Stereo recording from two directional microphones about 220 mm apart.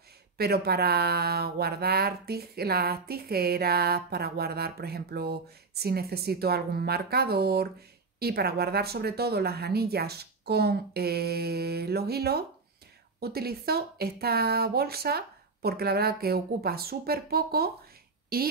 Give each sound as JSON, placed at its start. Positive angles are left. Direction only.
{"t": 0.4, "sound": "speech", "side_deg": -45}